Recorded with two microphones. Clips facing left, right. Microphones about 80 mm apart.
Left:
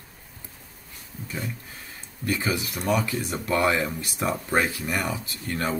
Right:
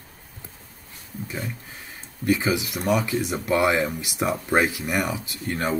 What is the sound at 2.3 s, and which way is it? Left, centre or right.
Speech, centre.